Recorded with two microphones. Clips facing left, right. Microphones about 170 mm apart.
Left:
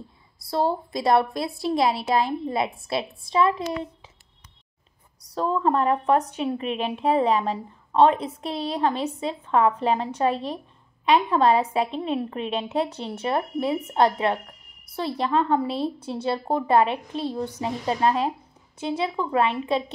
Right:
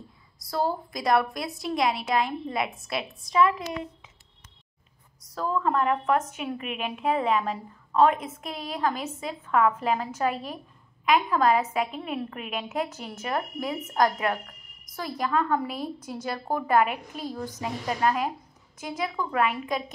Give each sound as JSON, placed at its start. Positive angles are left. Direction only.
{"t": 0.5, "sound": "a woman's voice", "side_deg": 25}
{"t": 5.3, "sound": "a woman's voice", "side_deg": 30}